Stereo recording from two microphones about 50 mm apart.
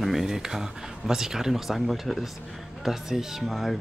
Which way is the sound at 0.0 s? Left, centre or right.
Centre.